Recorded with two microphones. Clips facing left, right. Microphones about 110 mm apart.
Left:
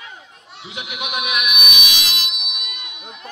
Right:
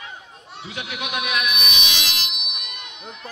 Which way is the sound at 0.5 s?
15° left (ahead or behind).